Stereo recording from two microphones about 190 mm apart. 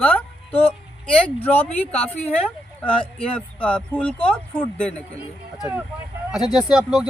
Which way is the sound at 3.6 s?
5° left (ahead or behind).